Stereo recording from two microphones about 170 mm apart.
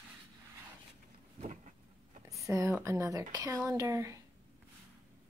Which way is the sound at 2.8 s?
20° right (ahead or behind).